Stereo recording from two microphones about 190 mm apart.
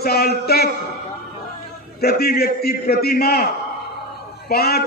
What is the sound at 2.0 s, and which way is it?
A man's voice, 55° left (ahead or behind).